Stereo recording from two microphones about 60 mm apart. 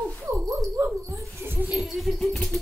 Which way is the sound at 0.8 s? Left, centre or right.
Right.